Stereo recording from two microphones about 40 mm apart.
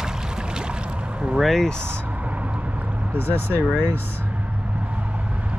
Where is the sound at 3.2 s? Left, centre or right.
Right.